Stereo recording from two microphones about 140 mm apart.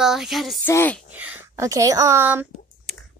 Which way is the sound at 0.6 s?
15° left (ahead or behind).